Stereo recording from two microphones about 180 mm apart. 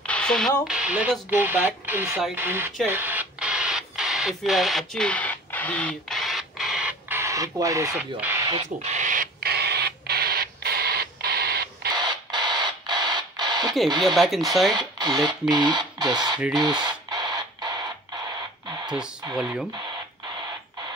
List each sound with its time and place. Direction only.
0.0 s speech: 5° left (ahead or behind); by 2.7 s 10° right (ahead or behind)
2.9 s radio: 10° right (ahead or behind)
7.9 s speech: 10° right (ahead or behind)
8.6 s owl: 40° right (ahead or behind); by 11.9 s 60° right (ahead or behind)
11.9 s a sound: 25° right (ahead or behind)
14.0 s speech: centre (ahead or behind)
14.7 s speech: 25° right (ahead or behind)
16.5 s a sound: 25° right (ahead or behind)